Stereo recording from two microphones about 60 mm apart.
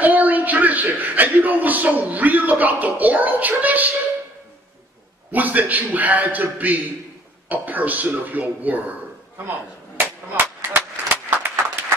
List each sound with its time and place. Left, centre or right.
0.0 s a man's voice: right
5.3 s a man's voice: right
9.9 s a sound: right